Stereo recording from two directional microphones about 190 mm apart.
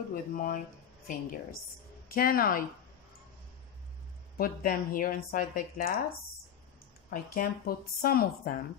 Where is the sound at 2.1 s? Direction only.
50° left (ahead or behind).